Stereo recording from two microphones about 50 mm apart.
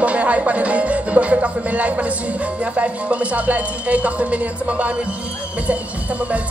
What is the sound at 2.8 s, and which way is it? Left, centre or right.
Speech, right.